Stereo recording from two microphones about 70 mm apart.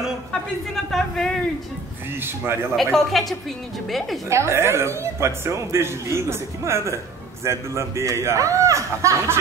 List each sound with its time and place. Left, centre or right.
0.8 s speech: centre
2.1 s speech: right
2.7 s speech: centre
4.3 s a man's voice: right